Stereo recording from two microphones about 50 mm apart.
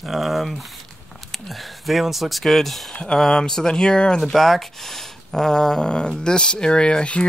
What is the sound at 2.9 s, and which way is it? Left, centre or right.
Speech, left.